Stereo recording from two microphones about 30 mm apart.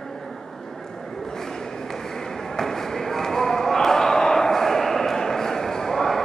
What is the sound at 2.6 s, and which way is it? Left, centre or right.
Basketball bounce, centre.